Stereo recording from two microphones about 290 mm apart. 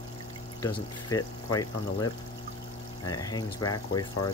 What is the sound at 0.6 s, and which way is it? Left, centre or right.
Speech, centre.